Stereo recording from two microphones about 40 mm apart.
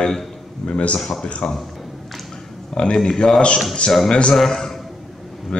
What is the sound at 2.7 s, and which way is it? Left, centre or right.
Speech, left.